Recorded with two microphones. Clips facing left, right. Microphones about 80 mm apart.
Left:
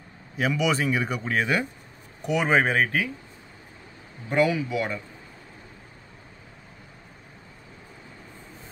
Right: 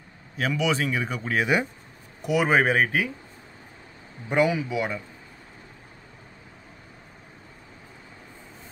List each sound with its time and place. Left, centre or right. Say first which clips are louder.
0.4 s speech: left 1 dB; centre
4.3 s speech: even; centre